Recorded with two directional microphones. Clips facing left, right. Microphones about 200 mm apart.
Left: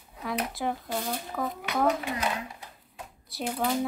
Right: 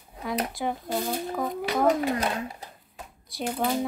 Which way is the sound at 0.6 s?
Centre (ahead or behind).